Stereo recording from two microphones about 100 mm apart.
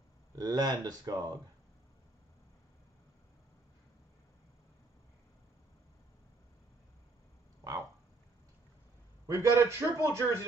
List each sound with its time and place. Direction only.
0.4 s speech: 40° right (ahead or behind)
9.3 s a man's voice: 25° right (ahead or behind)